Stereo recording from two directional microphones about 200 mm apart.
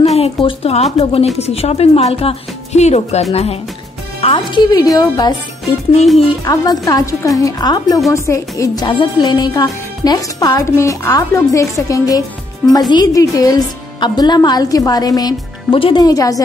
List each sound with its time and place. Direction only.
0.0 s a woman's voice: 30° left (ahead or behind)
4.6 s a woman's voice: 20° left (ahead or behind)